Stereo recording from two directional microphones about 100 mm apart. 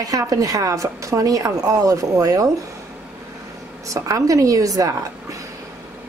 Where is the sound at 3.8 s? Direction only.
35° right (ahead or behind).